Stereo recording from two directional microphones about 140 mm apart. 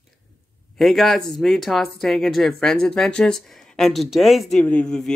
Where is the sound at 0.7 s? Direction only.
Centre (ahead or behind).